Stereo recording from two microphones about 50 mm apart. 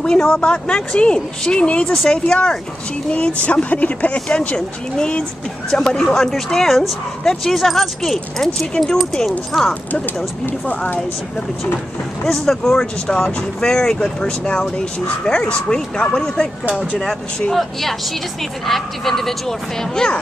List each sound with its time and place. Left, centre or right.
0.0 s speech: centre
5.7 s speech: centre
12.3 s speech: centre
14.4 s speech: left
17.6 s speech: centre